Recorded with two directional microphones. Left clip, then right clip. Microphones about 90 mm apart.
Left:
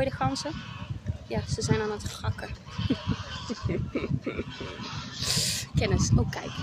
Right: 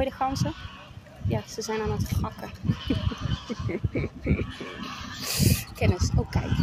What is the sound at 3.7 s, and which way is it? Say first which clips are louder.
Speech: even; 25° left (ahead or behind).